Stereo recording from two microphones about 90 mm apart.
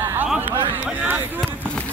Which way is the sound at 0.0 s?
20° right (ahead or behind).